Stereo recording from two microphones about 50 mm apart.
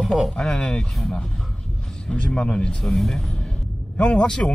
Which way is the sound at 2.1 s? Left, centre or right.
Centre.